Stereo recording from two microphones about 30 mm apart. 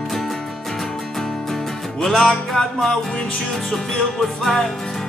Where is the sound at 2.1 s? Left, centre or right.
Centre.